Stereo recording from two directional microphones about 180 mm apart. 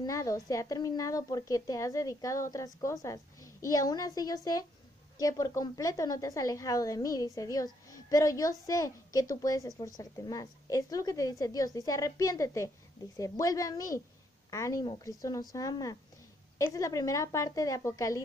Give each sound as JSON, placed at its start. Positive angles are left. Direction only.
{"t": 0.0, "sound": "a woman's voice", "side_deg": 20}